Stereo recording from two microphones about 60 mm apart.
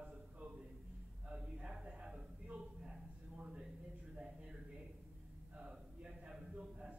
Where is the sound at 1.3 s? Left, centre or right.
Centre.